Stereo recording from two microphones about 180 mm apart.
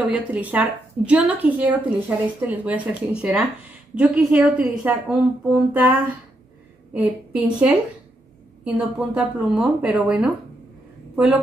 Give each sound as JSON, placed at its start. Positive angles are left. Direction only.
{"t": 0.0, "sound": "a woman's voice", "side_deg": -10}